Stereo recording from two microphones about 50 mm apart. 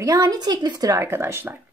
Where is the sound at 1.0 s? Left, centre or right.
Right.